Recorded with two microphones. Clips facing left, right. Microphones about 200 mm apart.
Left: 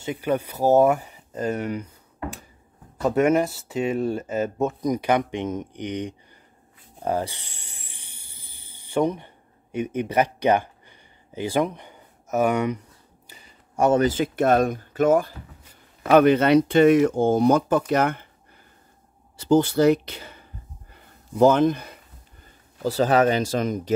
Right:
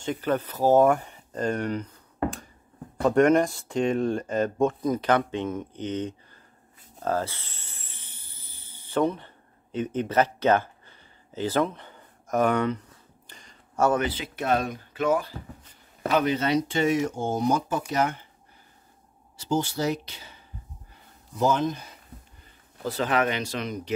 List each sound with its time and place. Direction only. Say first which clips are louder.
0.0 s speech: left 2 dB; 10° left (ahead or behind)
3.0 s speech: even; 5° left (ahead or behind)
7.0 s a sound: left 2 dB; 15° left (ahead or behind)
13.9 s speech: left 8 dB; 45° left (ahead or behind)
19.3 s speech: left 8 dB; 55° left (ahead or behind)
20.9 s a sound: left 11 dB; 60° left (ahead or behind)
22.8 s speech: left 6 dB; 40° left (ahead or behind)